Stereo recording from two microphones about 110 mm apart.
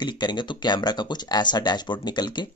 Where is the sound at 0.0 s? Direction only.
40° left (ahead or behind).